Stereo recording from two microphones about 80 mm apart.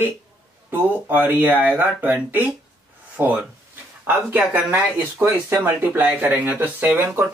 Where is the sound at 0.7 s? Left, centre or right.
Right.